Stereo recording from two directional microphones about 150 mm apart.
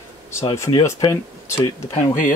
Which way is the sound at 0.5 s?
20° left (ahead or behind).